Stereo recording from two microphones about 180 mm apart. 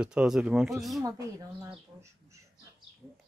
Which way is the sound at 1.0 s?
20° right (ahead or behind).